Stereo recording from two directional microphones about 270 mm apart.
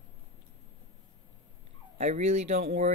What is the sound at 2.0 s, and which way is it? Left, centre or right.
Speech, right.